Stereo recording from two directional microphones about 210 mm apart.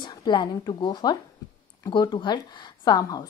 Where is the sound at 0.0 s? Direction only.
20° left (ahead or behind).